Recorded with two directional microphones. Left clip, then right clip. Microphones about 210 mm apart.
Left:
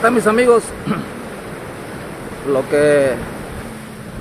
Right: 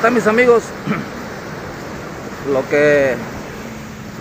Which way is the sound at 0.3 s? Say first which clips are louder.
Even; 15° left (ahead or behind).